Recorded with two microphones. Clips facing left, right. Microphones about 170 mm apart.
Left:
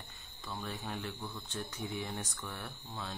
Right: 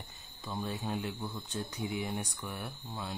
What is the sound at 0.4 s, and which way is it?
Speech, 15° right (ahead or behind).